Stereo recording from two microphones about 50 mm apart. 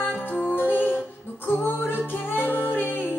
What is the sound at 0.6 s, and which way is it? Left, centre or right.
Humming, right.